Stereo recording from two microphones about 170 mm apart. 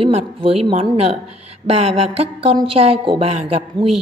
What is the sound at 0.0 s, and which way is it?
A woman's voice, 35° right (ahead or behind).